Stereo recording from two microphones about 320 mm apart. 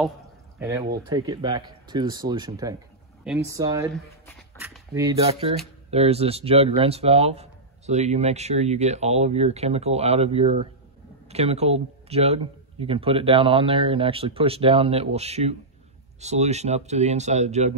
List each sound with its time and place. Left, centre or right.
0.6 s speech: centre